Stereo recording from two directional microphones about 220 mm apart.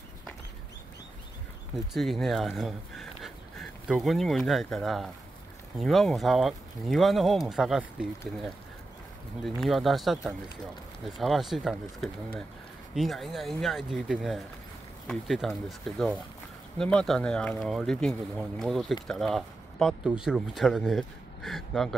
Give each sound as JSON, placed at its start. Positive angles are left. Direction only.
{"t": 2.0, "sound": "speech", "side_deg": 0}
{"t": 9.4, "sound": "speech", "side_deg": 0}
{"t": 16.7, "sound": "speech", "side_deg": 5}